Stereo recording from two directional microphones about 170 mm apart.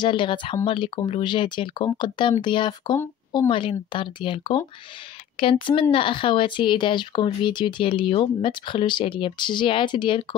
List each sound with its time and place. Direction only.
0.0 s speech: 30° left (ahead or behind)